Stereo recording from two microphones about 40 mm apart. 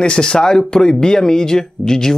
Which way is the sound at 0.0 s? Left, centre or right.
Left.